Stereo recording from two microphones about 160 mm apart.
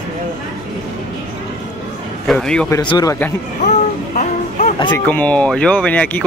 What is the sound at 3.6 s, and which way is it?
Child singing, 50° left (ahead or behind).